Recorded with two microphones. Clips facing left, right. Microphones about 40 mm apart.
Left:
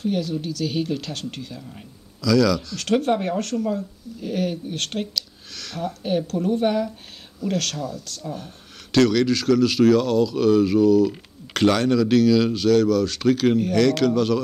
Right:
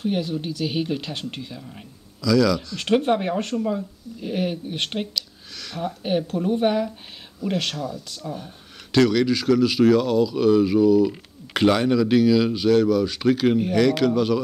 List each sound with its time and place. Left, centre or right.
0.0 s speech: right
2.2 s a man's voice: centre
2.8 s speech: right
5.1 s speech: centre
6.0 s speech: centre